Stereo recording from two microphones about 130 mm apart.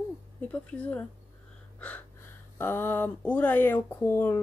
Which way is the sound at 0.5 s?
10° left (ahead or behind).